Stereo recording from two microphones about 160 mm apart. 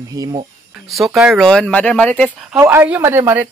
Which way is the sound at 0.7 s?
Centre (ahead or behind).